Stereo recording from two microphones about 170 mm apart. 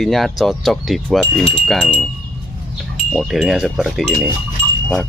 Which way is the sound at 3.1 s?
Centre (ahead or behind).